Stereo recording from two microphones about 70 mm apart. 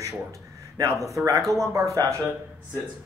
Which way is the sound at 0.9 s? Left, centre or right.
Right.